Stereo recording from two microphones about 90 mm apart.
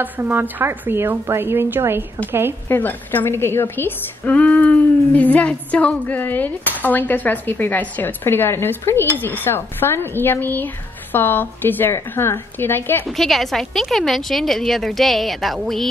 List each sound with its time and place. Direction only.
0.0 s a woman's voice: 20° right (ahead or behind)
2.7 s a woman's voice: 20° left (ahead or behind)
13.1 s a woman's voice: centre (ahead or behind)